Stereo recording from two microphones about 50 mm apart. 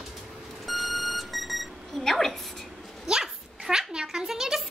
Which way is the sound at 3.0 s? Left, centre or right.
Centre.